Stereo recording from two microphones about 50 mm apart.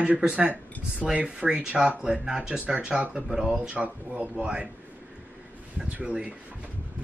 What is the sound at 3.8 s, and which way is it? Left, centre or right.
Speech, right.